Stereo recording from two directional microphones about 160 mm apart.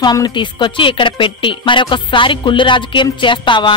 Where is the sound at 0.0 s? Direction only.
25° left (ahead or behind).